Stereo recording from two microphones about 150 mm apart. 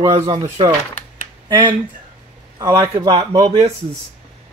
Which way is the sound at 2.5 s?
20° right (ahead or behind).